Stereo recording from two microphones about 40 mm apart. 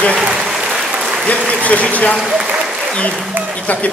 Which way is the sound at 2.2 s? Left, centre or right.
Centre.